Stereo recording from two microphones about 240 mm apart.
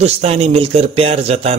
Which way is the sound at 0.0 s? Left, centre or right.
Right.